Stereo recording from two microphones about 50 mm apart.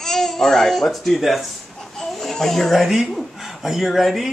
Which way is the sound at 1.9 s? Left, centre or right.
Centre.